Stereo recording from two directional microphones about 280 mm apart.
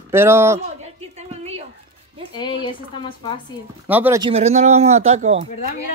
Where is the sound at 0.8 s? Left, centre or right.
Right.